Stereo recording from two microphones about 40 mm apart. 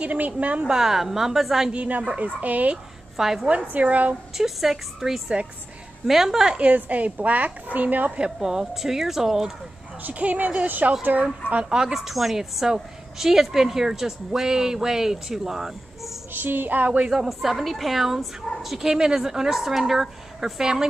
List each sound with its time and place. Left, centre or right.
0.0 s speech: right
0.7 s a woman's voice: centre
1.7 s speech: right
3.2 s a woman's voice: centre
3.7 s speech: right
4.4 s a woman's voice: centre
6.7 s speech: right
8.2 s a woman's voice: centre
10.0 s speech: right
11.7 s a woman's voice: centre
16.3 s speech: right
17.1 s a woman's voice: centre